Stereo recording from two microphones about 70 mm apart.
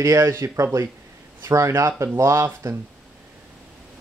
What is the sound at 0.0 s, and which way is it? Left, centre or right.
Speech, right.